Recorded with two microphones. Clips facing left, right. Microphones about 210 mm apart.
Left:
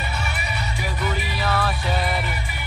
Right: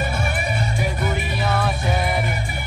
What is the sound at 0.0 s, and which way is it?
Music, 50° right (ahead or behind).